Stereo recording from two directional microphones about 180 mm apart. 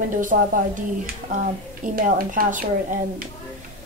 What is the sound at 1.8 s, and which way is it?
Speech, 45° right (ahead or behind).